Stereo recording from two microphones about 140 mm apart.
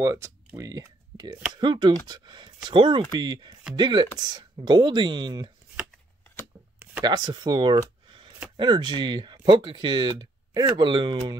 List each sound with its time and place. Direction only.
0.0 s speech: 20° right (ahead or behind)
7.0 s speech: 30° right (ahead or behind)